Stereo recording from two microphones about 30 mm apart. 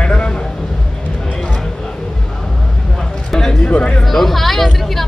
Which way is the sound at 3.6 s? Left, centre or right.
Left.